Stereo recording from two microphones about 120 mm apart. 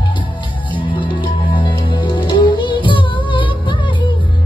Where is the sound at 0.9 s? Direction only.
45° left (ahead or behind).